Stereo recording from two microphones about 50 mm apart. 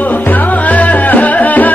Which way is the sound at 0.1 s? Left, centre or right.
Left.